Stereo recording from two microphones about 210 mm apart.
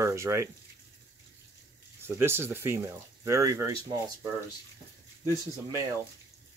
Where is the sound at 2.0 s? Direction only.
10° right (ahead or behind).